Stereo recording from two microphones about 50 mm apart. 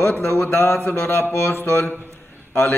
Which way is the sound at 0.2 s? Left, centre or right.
Left.